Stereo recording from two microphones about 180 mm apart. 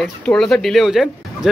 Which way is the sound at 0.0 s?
5° left (ahead or behind).